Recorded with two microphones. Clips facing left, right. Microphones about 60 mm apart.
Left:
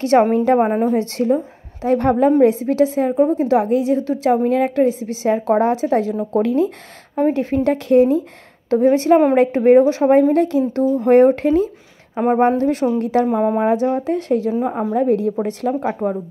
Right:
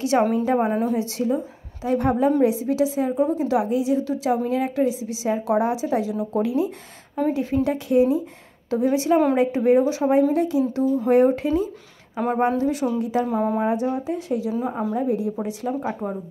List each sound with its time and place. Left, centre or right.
0.2 s a woman's voice: left
0.5 s a woman's voice: left
1.3 s a woman's voice: left
3.2 s a woman's voice: left
7.2 s a woman's voice: left
7.7 s speech: left
8.6 s a woman's voice: left
10.3 s a woman's voice: left
13.7 s speech: left
14.5 s a woman's voice: left
15.0 s speech: left
15.9 s a woman's voice: left